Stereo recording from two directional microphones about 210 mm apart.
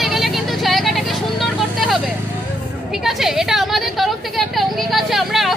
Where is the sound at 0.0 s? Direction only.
Centre (ahead or behind).